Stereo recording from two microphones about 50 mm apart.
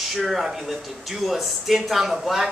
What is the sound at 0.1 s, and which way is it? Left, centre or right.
Speech, centre.